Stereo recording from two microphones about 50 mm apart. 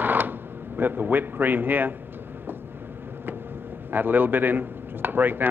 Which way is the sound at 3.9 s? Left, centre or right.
Right.